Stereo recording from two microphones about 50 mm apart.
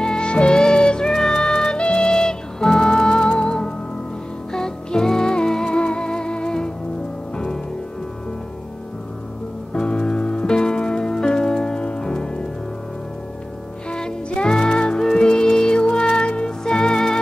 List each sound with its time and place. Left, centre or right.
0.0 s music: centre
9.8 s music: centre
13.8 s music: centre